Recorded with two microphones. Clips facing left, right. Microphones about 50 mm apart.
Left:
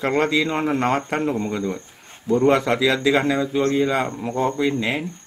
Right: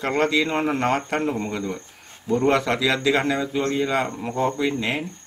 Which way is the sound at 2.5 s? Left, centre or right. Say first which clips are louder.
Left 2 dB; left.